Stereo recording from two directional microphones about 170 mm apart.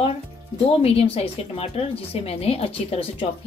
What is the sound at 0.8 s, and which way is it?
A woman's voice, 35° left (ahead or behind).